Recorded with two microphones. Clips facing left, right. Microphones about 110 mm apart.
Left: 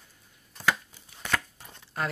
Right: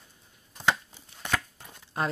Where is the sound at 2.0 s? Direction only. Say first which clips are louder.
Right 2 dB; 20° right (ahead or behind).